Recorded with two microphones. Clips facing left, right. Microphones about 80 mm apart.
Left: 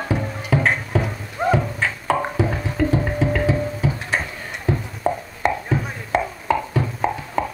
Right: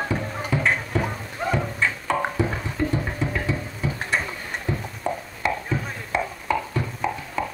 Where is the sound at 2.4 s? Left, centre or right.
Left.